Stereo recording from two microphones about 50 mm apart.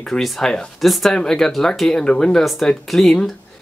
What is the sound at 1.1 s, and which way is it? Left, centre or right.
Speech, centre.